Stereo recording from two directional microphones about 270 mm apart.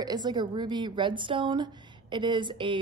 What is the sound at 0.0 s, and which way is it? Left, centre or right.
A woman's voice, centre.